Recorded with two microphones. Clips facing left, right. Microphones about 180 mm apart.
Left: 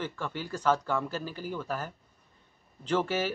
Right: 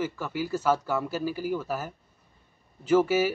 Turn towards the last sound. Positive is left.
turn(degrees=-10)  # may be behind; listen again after turning